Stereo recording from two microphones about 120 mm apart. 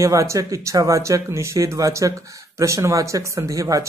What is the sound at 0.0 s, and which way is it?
Speech, 25° right (ahead or behind).